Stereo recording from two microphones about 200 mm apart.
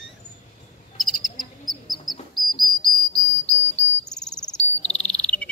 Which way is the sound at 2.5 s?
25° left (ahead or behind).